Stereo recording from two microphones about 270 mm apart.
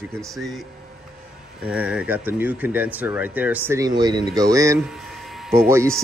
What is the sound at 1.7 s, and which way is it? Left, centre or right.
Speech, centre.